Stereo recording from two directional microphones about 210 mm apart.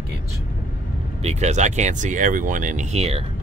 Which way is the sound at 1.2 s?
35° right (ahead or behind).